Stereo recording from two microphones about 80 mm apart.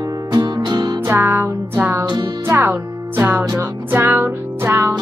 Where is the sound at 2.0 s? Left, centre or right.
Right.